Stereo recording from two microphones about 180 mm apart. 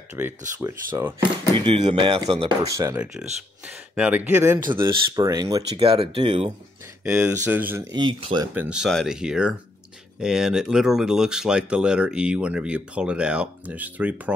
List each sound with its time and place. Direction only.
0.2 s speech: 15° right (ahead or behind)
1.7 s speech: 30° right (ahead or behind)
3.0 s speech: 5° right (ahead or behind); by 6.5 s 30° right (ahead or behind)
7.1 s speech: 5° right (ahead or behind)
7.9 s speech: 25° right (ahead or behind)
8.5 s speech: 5° right (ahead or behind)